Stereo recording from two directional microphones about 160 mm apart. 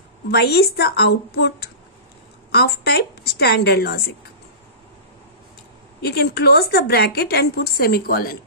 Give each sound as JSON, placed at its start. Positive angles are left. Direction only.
{"t": 0.3, "sound": "a woman's voice", "side_deg": 90}
{"t": 2.5, "sound": "a woman's voice", "side_deg": 80}
{"t": 5.9, "sound": "a woman's voice", "side_deg": 90}